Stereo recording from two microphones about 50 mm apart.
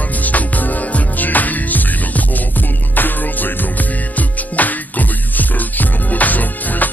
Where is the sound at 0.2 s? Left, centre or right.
Left.